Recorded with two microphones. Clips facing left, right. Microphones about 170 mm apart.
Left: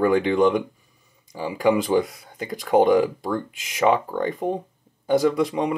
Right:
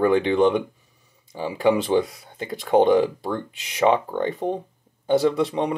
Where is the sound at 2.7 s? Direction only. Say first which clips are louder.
Even; 5° left (ahead or behind).